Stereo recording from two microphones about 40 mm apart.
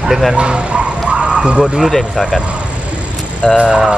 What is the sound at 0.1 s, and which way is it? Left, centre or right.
Speech, centre.